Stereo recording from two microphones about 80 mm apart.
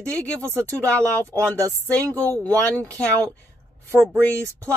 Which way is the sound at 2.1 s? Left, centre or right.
Right.